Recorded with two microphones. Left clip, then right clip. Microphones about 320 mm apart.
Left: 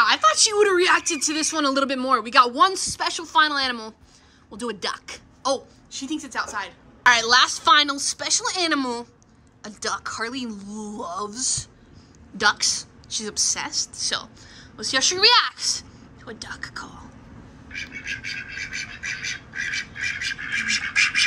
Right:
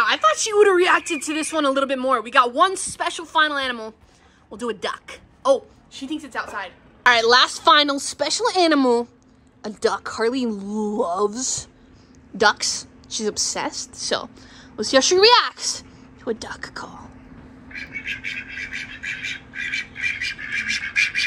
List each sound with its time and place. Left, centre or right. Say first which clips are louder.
0.0 s a woman's voice: left 1 dB; centre
17.9 s bird: right 4 dB; left